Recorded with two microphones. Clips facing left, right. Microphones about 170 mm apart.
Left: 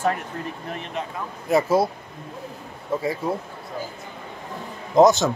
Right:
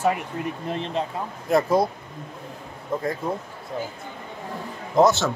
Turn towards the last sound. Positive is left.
turn(degrees=15)  # may be behind; listen again after turning